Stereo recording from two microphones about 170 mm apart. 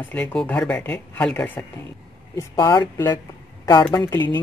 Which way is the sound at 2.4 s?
20° left (ahead or behind).